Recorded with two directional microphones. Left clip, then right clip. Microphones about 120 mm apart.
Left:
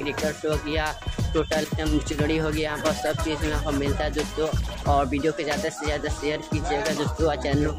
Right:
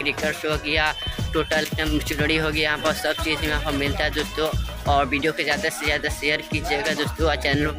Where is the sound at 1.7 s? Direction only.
10° left (ahead or behind).